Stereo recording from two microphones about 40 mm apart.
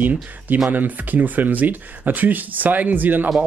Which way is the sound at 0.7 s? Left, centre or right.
Right.